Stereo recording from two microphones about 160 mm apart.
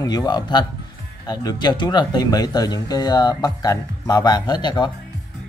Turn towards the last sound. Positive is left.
turn(degrees=25)  # may be behind; listen again after turning